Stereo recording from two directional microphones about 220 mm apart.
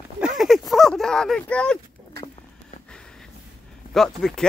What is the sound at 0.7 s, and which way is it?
Speech, centre (ahead or behind).